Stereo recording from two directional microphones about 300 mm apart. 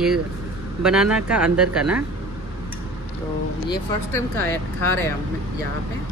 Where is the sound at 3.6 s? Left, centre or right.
Centre.